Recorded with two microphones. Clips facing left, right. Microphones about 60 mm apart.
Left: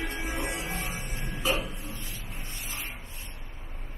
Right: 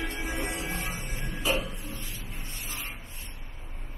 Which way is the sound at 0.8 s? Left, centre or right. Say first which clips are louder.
Even; centre.